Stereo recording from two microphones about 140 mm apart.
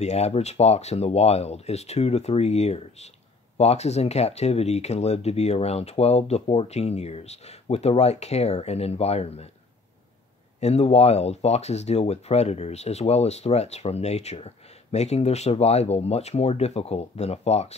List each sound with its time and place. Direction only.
0.0 s speech: 50° left (ahead or behind)
10.6 s speech: 50° left (ahead or behind)